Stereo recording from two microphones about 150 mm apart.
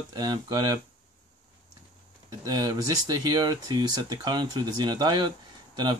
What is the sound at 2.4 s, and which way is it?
Speech, 25° right (ahead or behind).